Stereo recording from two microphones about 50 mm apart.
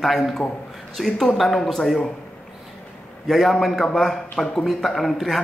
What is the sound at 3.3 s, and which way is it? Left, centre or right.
Speech, centre.